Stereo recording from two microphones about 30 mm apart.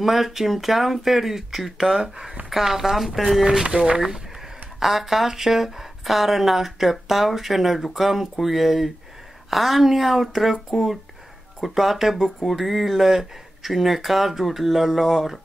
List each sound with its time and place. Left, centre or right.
0.0 s a woman's voice: centre
3.6 s speech: right
4.7 s a woman's voice: centre